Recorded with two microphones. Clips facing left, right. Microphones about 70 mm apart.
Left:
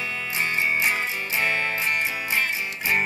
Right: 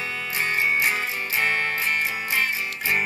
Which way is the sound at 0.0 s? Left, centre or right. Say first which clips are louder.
Even; right.